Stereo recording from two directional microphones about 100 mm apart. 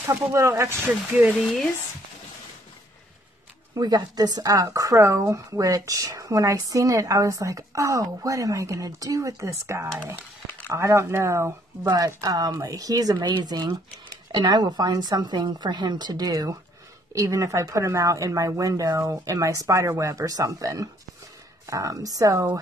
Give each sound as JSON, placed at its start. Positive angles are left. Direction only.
{"t": 0.0, "sound": "speech", "side_deg": -30}
{"t": 3.7, "sound": "a woman's voice", "side_deg": -45}